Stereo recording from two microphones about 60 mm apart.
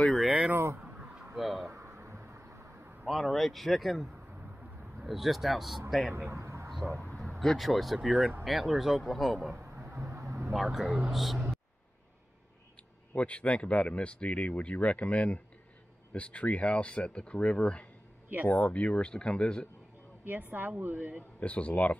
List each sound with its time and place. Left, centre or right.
1.3 s speech: centre
1.7 s a sound: right
3.1 s speech: centre
6.1 s a sound: right
7.2 s speech: centre
9.9 s vehicle: right
10.5 s speech: centre
13.1 s speech: left
18.5 s speech: left
18.8 s speech: centre
20.2 s a woman's voice: right
21.4 s speech: left